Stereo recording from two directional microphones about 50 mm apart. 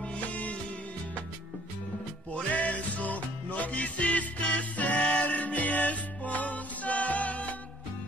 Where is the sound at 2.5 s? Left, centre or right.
Left.